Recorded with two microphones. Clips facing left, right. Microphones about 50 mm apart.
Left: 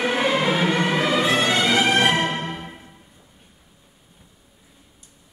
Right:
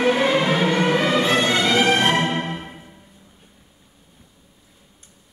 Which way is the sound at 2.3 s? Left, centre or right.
Right.